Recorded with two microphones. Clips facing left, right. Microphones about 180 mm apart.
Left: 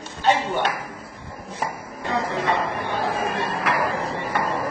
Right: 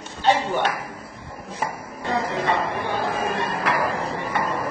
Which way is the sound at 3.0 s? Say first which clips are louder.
Left 3 dB; 35° left (ahead or behind).